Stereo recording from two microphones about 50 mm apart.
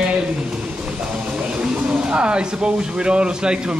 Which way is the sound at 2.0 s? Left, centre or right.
Right.